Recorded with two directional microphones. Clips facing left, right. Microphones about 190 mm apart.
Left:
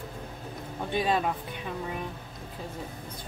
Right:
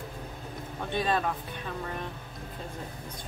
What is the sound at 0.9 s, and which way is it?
Speech, 10° left (ahead or behind).